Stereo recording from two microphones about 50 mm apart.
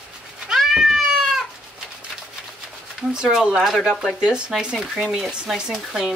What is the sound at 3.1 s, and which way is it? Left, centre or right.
Speech, centre.